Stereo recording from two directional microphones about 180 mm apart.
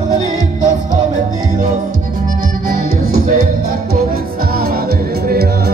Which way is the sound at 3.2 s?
50° right (ahead or behind).